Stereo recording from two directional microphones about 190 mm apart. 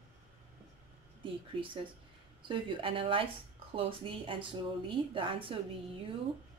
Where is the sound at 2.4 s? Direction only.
25° right (ahead or behind).